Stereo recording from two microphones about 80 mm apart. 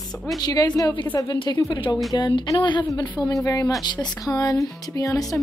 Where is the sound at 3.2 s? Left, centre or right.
Left.